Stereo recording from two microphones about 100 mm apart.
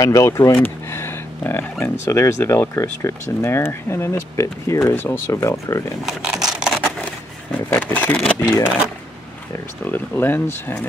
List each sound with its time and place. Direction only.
0.0 s speech: 35° left (ahead or behind)
6.0 s a sound: 5° right (ahead or behind)
7.7 s speech: 15° left (ahead or behind)
9.8 s speech: 20° left (ahead or behind)